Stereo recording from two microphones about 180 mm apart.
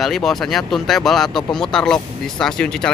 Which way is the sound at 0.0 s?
Centre (ahead or behind).